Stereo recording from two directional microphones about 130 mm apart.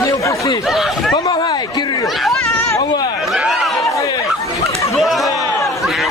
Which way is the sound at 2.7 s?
30° left (ahead or behind).